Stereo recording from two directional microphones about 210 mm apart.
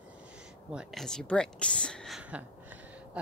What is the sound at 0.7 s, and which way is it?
Speech, centre (ahead or behind).